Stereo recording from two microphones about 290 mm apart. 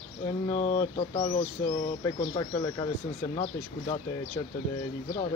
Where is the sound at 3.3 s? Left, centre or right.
Centre.